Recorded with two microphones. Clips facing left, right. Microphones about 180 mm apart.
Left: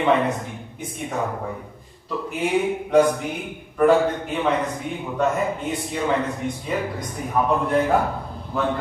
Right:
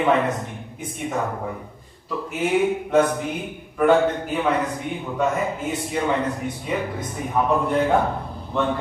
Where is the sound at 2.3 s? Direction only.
Centre (ahead or behind).